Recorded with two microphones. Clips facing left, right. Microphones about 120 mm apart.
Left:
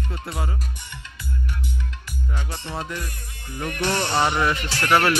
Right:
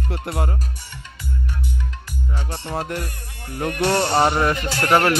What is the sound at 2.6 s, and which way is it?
Speech, 50° right (ahead or behind).